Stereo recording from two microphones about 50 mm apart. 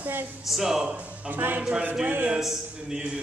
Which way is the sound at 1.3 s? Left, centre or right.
Right.